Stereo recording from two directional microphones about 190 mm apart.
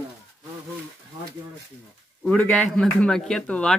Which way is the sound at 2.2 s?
5° left (ahead or behind).